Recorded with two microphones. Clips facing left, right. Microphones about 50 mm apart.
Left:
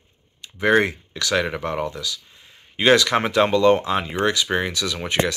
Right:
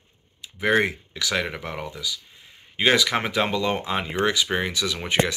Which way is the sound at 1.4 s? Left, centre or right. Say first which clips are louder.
Left 6 dB; centre.